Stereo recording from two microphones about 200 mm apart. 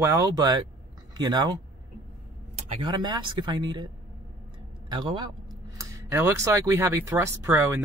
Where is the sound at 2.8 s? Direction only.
20° right (ahead or behind).